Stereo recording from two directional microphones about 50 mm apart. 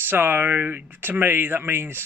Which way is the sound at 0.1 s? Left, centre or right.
Right.